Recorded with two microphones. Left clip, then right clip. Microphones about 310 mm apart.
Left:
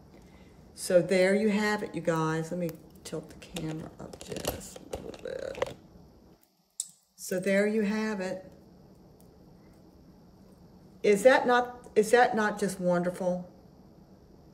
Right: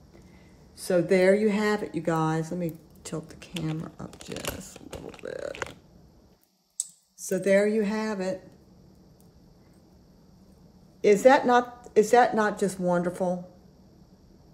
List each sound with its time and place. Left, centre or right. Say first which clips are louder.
0.7 s speech: right 1 dB; centre
5.2 s typing: right 3 dB; right
6.8 s speech: right 4 dB; centre
11.0 s speech: right 3 dB; centre